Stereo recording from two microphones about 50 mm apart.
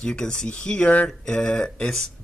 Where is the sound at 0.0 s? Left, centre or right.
Centre.